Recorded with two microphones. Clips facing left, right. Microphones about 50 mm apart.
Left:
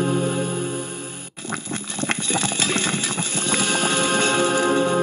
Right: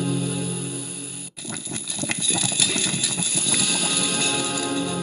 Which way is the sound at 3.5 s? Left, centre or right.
Left.